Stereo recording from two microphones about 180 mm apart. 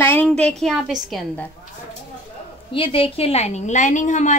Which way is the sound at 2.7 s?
30° left (ahead or behind).